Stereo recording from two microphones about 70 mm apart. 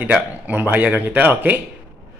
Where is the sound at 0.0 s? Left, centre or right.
Right.